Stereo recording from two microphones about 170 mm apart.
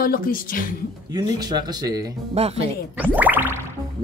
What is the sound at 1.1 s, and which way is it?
Speech, 25° right (ahead or behind).